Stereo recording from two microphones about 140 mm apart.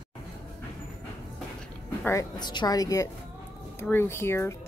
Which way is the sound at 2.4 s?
30° left (ahead or behind).